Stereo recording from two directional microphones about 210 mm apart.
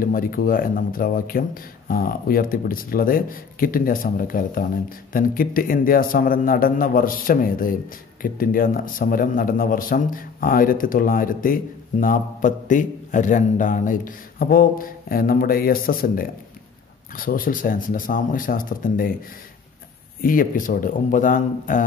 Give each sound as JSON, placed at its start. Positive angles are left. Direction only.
{"t": 0.0, "sound": "a man's voice", "side_deg": 45}
{"t": 20.2, "sound": "a man's voice", "side_deg": 40}